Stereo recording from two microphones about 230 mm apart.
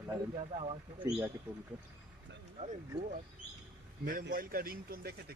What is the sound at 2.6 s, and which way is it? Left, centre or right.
A man's voice, right.